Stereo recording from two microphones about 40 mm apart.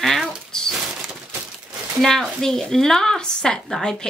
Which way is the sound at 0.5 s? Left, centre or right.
Centre.